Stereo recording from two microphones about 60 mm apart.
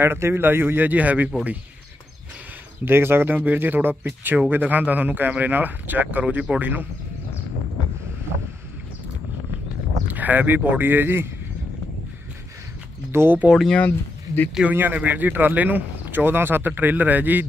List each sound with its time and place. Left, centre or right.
0.0 s speech: right
2.8 s speech: right; by 6.6 s centre
6.6 s speech: right
10.1 s speech: right
13.1 s speech: right
13.8 s speech: left
14.7 s speech: right